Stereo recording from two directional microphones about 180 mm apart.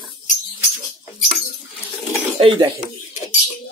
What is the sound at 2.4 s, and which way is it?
Speech, 30° right (ahead or behind).